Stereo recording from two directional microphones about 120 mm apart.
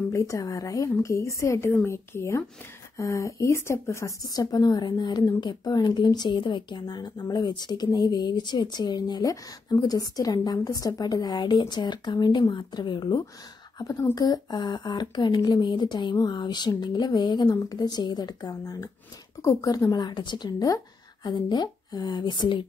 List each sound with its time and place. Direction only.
0.1 s a woman's voice: 30° left (ahead or behind)